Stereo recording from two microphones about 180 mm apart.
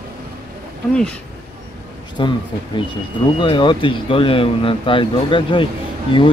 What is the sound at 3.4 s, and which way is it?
Speech, 25° left (ahead or behind).